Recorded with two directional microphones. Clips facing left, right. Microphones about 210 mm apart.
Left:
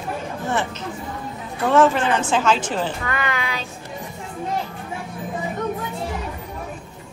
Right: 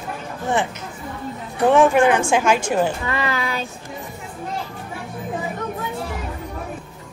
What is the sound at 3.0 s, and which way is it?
Speech, 30° right (ahead or behind).